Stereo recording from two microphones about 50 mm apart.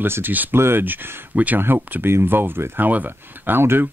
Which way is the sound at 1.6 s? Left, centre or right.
Right.